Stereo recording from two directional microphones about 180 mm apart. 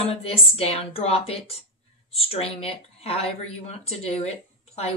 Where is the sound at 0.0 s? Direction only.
30° left (ahead or behind).